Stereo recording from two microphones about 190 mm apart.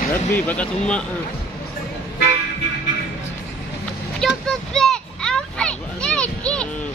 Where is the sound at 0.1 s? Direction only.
10° left (ahead or behind).